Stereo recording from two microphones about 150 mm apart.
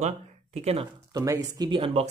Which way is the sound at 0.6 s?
45° right (ahead or behind).